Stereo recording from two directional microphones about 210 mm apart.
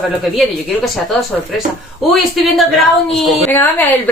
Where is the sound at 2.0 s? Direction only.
Centre (ahead or behind).